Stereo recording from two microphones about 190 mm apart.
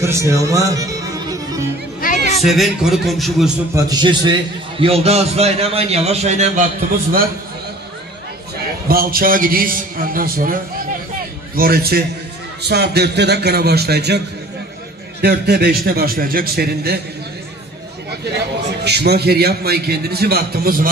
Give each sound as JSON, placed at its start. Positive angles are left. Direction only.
{"t": 0.0, "sound": "speech", "side_deg": -15}
{"t": 2.0, "sound": "chatter", "side_deg": 40}
{"t": 2.4, "sound": "a man's voice", "side_deg": 0}
{"t": 3.7, "sound": "a man's voice", "side_deg": -25}
{"t": 8.8, "sound": "a man's voice", "side_deg": -50}
{"t": 15.2, "sound": "a man's voice", "side_deg": -60}
{"t": 18.9, "sound": "a man's voice", "side_deg": -60}